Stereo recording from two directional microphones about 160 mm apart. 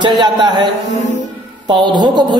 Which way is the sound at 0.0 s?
25° right (ahead or behind).